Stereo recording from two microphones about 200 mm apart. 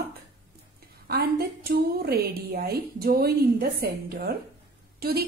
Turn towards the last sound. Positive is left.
turn(degrees=-50)  # may be behind; listen again after turning